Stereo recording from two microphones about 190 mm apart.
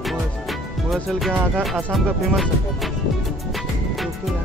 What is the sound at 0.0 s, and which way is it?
Speech, centre (ahead or behind).